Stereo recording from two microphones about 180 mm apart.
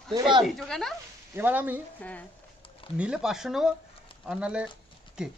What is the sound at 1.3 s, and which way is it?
Speech, 10° right (ahead or behind).